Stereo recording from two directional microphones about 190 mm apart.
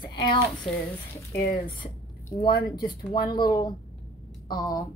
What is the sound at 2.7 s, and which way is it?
Speech, 20° left (ahead or behind).